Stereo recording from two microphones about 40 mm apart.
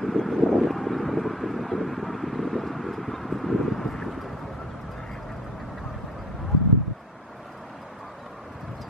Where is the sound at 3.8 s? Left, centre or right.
Centre.